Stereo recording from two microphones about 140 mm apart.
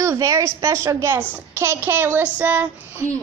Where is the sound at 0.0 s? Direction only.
20° right (ahead or behind).